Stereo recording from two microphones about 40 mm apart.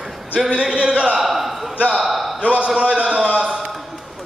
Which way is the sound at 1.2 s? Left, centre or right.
Centre.